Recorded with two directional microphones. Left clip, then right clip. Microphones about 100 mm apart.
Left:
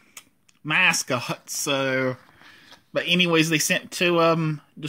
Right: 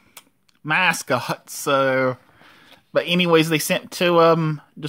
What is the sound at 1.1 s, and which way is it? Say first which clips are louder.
Speech: right 4 dB; 40° right (ahead or behind).